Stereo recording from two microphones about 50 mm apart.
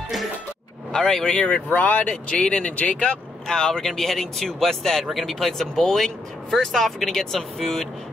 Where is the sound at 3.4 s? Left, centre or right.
Centre.